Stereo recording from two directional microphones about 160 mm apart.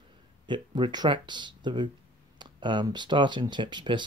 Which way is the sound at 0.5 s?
30° right (ahead or behind).